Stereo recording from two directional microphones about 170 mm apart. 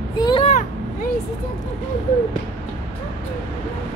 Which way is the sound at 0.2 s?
30° left (ahead or behind).